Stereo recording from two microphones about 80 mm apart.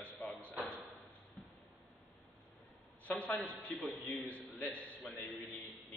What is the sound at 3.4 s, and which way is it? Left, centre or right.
A man's voice, centre.